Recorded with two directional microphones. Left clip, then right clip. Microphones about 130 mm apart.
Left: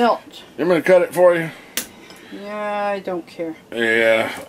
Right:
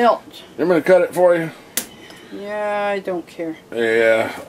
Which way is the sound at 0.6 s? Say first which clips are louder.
Even; 30° left (ahead or behind).